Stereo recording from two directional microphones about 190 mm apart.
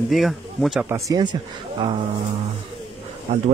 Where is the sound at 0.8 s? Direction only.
15° right (ahead or behind).